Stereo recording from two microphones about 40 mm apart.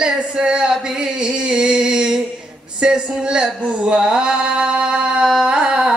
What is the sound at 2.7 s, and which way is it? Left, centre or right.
Speech, right.